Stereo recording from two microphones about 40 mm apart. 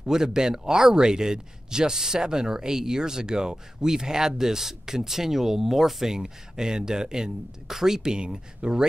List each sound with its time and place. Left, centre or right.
0.0 s speech: centre